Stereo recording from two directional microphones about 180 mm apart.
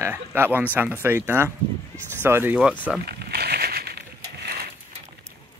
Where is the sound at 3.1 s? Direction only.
60° right (ahead or behind).